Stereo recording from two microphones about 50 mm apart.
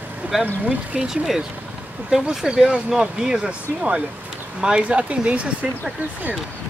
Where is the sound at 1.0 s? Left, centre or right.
Centre; by 5.7 s right.